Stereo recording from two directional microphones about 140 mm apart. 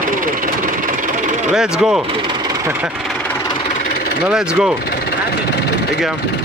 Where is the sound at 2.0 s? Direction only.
35° right (ahead or behind).